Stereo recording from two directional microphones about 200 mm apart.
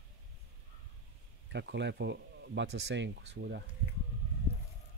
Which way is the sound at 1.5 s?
60° right (ahead or behind).